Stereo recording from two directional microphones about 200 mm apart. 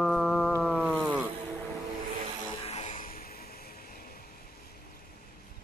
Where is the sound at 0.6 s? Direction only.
5° right (ahead or behind).